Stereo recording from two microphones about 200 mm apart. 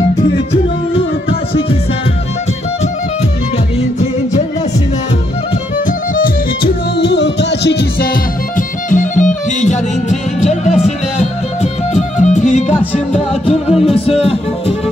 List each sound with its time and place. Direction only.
5.9 s music: 45° left (ahead or behind)
8.5 s music: 40° left (ahead or behind)